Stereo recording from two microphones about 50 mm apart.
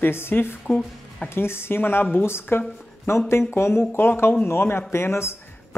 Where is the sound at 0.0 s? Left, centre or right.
Left.